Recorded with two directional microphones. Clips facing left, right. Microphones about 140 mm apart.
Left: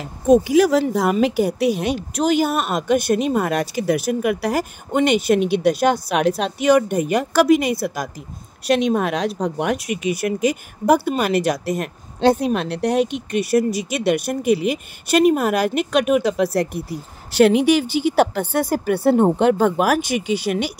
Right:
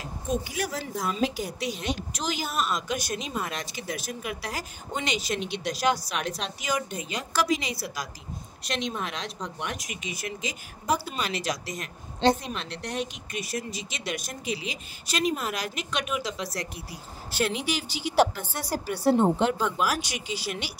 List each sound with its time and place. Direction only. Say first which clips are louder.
0.0 s a woman's voice: left 15 dB; 75° left (ahead or behind); by 20.7 s 55° left (ahead or behind)